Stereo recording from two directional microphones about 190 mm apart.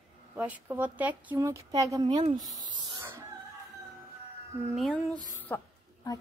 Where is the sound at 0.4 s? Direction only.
10° right (ahead or behind).